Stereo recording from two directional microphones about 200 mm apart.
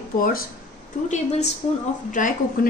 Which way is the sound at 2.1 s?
40° left (ahead or behind).